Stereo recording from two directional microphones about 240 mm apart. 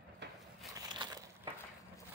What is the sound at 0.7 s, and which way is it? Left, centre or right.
Crushing, centre.